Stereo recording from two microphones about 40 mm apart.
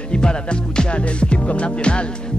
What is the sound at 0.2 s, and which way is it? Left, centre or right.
Music, left.